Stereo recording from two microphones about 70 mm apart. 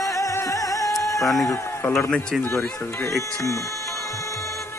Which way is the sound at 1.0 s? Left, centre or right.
Left.